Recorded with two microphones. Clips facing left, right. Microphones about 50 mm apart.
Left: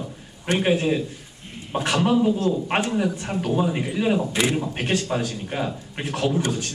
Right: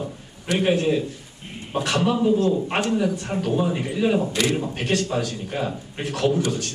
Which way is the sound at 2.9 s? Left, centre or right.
Centre.